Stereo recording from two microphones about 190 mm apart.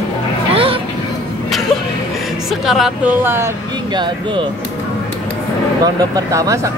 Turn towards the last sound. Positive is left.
turn(degrees=-15)  # may be behind; listen again after turning